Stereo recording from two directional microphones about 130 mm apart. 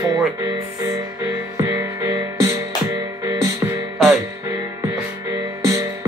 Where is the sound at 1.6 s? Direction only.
25° right (ahead or behind).